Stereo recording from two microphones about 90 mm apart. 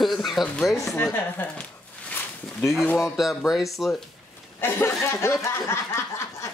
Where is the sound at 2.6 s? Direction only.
Centre (ahead or behind).